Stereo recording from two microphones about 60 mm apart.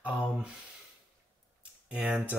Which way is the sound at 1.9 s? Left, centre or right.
Centre.